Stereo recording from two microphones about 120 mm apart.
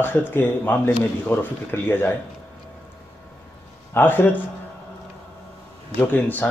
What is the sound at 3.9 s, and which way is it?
Speech, 15° left (ahead or behind).